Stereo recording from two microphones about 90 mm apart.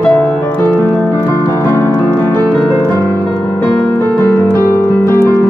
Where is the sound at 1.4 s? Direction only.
35° left (ahead or behind).